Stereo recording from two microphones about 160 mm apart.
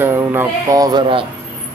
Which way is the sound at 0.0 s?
15° right (ahead or behind).